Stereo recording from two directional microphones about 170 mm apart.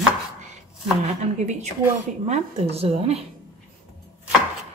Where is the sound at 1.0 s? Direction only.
45° right (ahead or behind).